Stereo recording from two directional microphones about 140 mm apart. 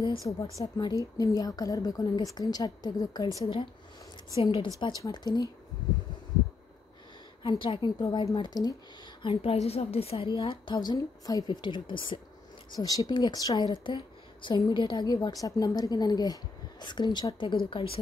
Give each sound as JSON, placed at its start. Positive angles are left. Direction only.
{"t": 0.4, "sound": "a woman's voice", "side_deg": 25}
{"t": 4.4, "sound": "a woman's voice", "side_deg": 35}
{"t": 7.4, "sound": "a woman's voice", "side_deg": 40}
{"t": 9.2, "sound": "a woman's voice", "side_deg": 40}